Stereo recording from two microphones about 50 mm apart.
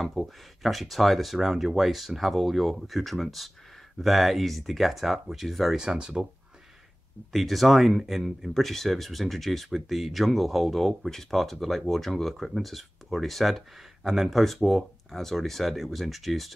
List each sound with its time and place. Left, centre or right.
0.0 s speech: centre
5.8 s speech: centre
7.3 s speech: centre